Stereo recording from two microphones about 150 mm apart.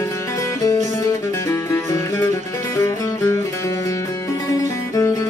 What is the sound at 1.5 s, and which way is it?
Music, 20° left (ahead or behind).